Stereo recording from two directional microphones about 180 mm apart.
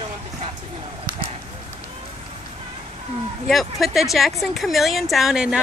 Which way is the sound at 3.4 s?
Centre (ahead or behind).